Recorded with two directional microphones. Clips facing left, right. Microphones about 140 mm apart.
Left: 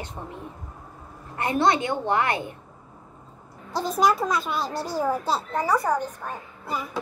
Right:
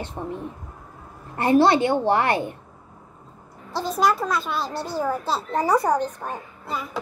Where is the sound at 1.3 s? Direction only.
30° right (ahead or behind).